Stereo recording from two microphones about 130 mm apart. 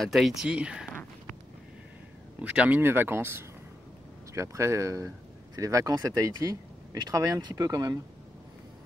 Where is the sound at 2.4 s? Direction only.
10° right (ahead or behind); by 8.0 s 30° right (ahead or behind).